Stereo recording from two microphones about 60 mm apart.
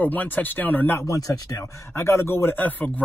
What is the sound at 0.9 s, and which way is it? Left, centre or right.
Speech, left.